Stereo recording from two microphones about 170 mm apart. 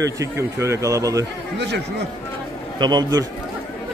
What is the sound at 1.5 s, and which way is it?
Speech, 85° right.